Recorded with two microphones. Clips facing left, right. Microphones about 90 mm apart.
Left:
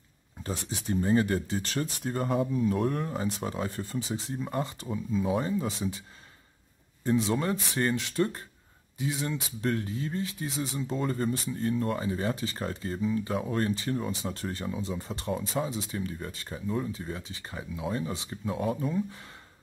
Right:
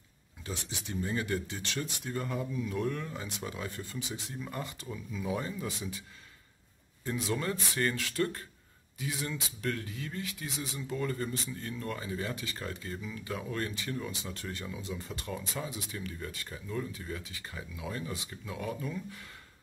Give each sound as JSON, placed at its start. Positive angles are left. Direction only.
{"t": 0.4, "sound": "speech", "side_deg": 40}
{"t": 7.1, "sound": "speech", "side_deg": 25}